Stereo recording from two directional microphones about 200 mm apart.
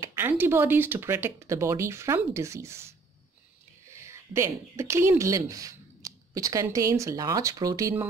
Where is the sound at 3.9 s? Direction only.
15° right (ahead or behind).